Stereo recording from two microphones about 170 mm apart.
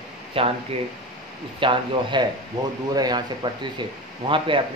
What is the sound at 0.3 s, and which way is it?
Speech, 35° right (ahead or behind).